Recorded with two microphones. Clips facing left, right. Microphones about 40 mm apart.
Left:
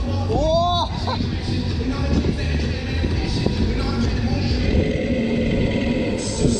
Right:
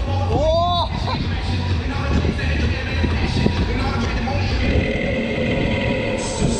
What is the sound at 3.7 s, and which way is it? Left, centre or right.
Music, right.